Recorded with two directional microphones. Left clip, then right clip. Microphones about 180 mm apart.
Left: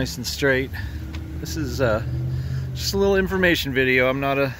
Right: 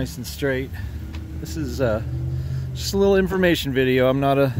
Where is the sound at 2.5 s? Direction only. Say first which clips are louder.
Even; 35° right (ahead or behind).